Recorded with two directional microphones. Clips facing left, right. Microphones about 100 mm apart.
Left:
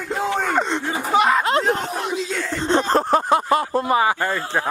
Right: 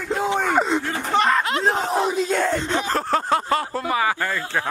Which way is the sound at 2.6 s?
30° left (ahead or behind).